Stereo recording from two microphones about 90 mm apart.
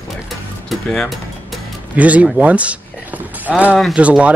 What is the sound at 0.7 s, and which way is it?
Speech, 5° left (ahead or behind).